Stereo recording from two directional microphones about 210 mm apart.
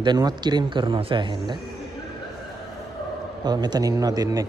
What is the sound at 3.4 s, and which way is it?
A man's voice, 20° right (ahead or behind).